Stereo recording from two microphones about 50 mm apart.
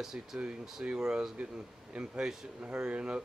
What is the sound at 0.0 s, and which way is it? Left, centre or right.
Speech, centre.